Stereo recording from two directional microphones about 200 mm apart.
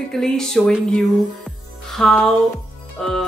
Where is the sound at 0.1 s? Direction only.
Centre (ahead or behind).